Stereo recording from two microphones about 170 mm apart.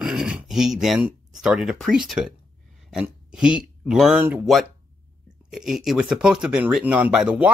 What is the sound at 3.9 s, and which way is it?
Speech, 5° right (ahead or behind).